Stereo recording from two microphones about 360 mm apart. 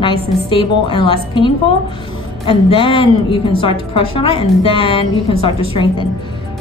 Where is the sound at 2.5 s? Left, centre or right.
Centre.